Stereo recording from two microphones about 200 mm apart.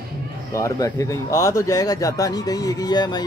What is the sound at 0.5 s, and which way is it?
Speech, 15° left (ahead or behind).